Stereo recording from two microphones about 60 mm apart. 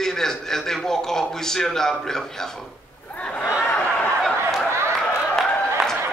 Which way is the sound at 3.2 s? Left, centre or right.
Left.